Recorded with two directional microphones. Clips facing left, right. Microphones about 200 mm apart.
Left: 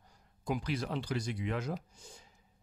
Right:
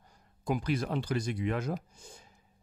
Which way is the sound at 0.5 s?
50° right (ahead or behind).